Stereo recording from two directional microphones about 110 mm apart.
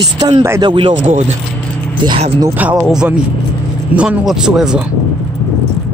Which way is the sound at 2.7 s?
5° right (ahead or behind).